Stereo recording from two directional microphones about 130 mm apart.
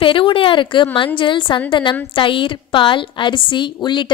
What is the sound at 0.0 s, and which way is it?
A woman's voice, 40° left (ahead or behind).